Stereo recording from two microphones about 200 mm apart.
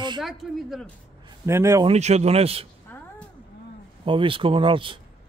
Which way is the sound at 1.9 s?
35° right (ahead or behind).